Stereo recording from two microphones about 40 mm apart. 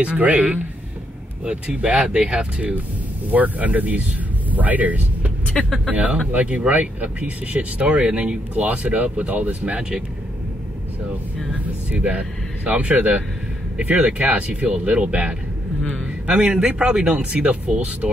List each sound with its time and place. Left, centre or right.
0.0 s speech: right
1.4 s a man's voice: right
3.3 s speech: right
5.5 s speech: centre
5.9 s speech: right
8.5 s a man's voice: right
11.6 s a man's voice: right; by 17.1 s centre
17.1 s speech: right